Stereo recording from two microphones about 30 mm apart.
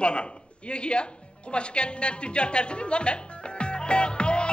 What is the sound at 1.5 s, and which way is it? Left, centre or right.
Music, left.